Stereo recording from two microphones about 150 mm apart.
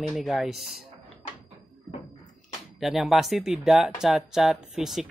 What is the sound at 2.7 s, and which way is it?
Speech, centre (ahead or behind).